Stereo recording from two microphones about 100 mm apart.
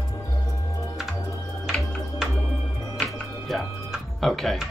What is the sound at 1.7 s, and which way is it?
Music, 5° left (ahead or behind).